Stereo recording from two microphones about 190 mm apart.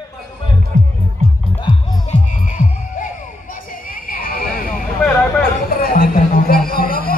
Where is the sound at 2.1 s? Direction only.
40° left (ahead or behind).